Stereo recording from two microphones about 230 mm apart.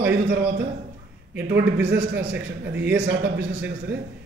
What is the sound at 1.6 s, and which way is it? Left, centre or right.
A man's voice, right.